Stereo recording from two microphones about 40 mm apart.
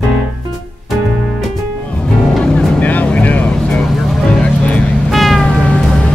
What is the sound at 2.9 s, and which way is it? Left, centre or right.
Vehicle, left.